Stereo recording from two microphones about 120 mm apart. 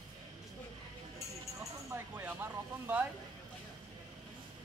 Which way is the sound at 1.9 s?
20° right (ahead or behind).